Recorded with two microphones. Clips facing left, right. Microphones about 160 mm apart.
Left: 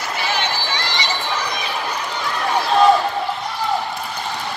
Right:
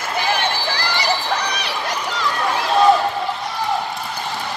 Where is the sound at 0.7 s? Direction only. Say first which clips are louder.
Right 3 dB; 65° right (ahead or behind).